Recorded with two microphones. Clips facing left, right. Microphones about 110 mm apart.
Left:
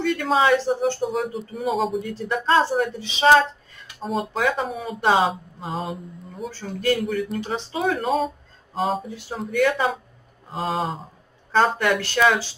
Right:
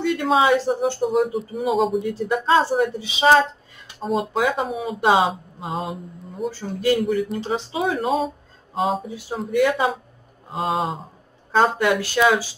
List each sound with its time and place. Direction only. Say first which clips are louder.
0.0 s speech: right 1 dB; 5° right (ahead or behind)
6.5 s speech: right 2 dB; 10° right (ahead or behind)